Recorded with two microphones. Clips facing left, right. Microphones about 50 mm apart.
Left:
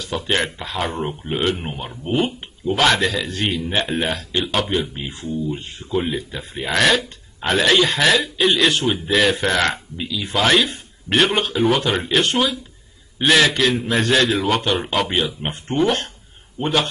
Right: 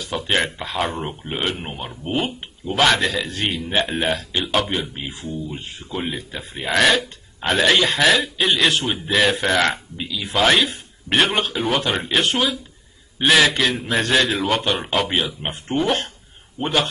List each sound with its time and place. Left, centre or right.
0.0 s speech: centre